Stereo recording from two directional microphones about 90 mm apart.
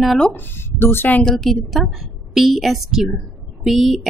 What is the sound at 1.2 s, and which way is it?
Speech, centre (ahead or behind).